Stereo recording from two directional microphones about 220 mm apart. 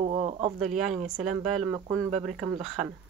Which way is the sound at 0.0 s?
30° right (ahead or behind).